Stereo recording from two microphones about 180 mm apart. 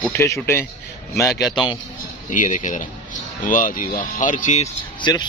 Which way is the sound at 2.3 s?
45° left (ahead or behind).